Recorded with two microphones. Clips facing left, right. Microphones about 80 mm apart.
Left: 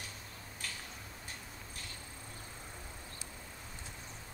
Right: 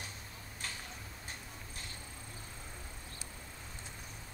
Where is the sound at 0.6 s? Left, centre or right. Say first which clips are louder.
Right 1 dB; right.